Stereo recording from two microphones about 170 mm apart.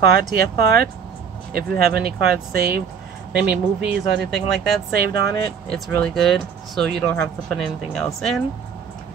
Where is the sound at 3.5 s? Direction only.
5° right (ahead or behind).